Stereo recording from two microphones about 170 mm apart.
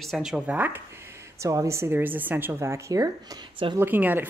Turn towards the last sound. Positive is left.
turn(degrees=-10)  # may be behind; listen again after turning